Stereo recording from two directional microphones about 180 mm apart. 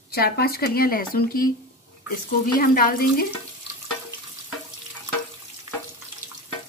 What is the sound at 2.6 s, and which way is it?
Speech, 55° left (ahead or behind).